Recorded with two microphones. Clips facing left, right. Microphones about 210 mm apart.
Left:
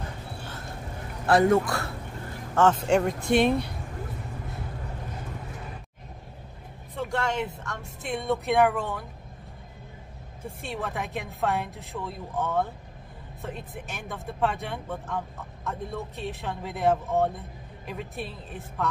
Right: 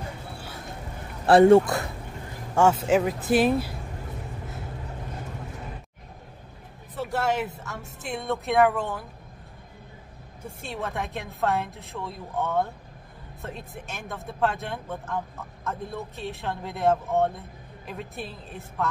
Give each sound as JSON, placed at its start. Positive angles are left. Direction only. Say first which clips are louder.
{"t": 1.2, "sound": "a man's voice", "louder": "right 6 dB", "side_deg": -30}
{"t": 2.5, "sound": "speech", "louder": "right 1 dB", "side_deg": -10}
{"t": 7.0, "sound": "speech", "louder": "right 2 dB", "side_deg": -5}
{"t": 10.4, "sound": "speech", "louder": "even", "side_deg": 0}